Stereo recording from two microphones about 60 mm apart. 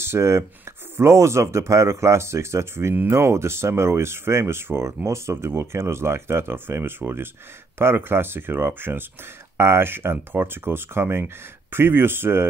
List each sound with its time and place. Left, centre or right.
0.0 s speech: right
4.8 s speech: right